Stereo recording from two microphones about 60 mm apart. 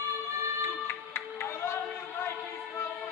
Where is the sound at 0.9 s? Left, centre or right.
Left.